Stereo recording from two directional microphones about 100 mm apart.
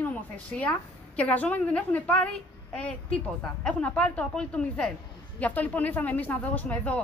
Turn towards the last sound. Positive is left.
turn(degrees=15)  # may be behind; listen again after turning